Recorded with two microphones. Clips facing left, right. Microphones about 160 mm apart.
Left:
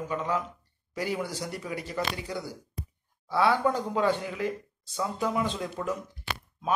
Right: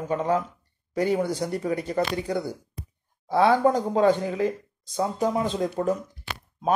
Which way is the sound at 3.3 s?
40° right (ahead or behind).